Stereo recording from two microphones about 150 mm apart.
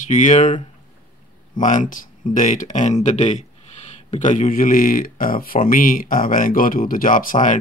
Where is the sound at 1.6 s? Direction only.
55° left (ahead or behind).